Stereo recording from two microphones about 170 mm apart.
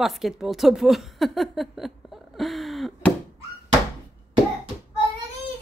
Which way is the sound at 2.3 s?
Centre (ahead or behind).